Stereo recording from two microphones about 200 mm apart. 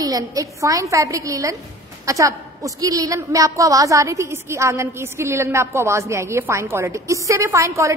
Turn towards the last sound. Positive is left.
turn(degrees=-15)  # may be behind; listen again after turning